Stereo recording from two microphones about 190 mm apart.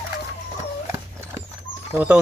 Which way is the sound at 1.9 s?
10° right (ahead or behind).